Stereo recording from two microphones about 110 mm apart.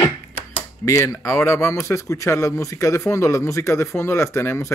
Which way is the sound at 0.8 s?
25° left (ahead or behind).